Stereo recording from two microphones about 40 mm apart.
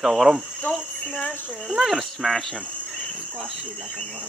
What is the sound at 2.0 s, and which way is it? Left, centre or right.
Speech, centre.